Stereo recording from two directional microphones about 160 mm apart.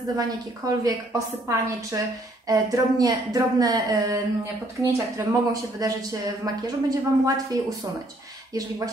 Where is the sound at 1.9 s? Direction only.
20° right (ahead or behind).